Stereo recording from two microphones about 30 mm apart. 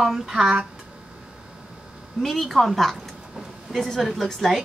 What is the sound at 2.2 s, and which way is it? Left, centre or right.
Speech, centre.